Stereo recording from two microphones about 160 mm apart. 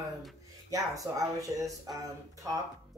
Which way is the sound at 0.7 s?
20° right (ahead or behind).